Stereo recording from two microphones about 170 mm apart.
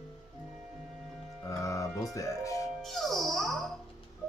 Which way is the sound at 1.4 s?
20° left (ahead or behind).